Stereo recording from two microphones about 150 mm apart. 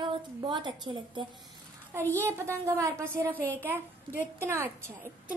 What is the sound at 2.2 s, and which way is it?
A child's voice, 15° right (ahead or behind).